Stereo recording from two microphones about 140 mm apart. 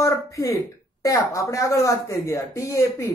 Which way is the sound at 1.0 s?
25° left (ahead or behind).